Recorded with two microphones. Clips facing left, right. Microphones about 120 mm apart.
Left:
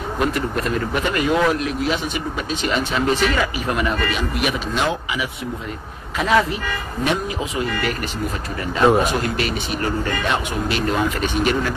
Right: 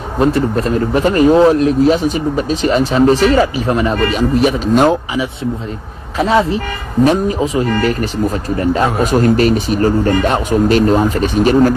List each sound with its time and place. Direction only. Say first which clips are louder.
0.2 s speech: right 9 dB; 35° right (ahead or behind)